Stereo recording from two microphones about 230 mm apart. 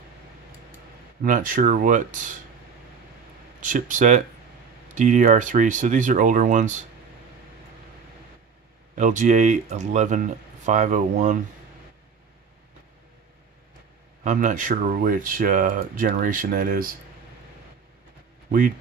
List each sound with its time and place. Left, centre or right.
1.2 s speech: right
3.6 s speech: right
8.9 s speech: right
14.2 s speech: right